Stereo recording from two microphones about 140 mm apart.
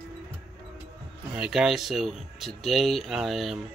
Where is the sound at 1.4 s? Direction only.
5° right (ahead or behind).